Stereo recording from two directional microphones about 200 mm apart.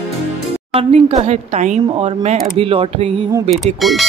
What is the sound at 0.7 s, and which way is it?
A woman's voice, 30° right (ahead or behind).